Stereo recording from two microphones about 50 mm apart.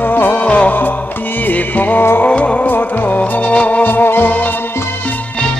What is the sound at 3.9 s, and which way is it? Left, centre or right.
Music, left.